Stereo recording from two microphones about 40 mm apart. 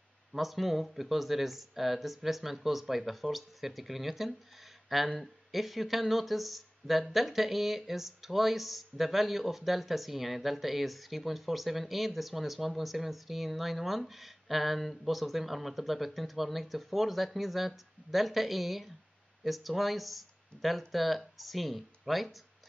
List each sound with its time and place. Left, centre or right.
0.3 s speech: centre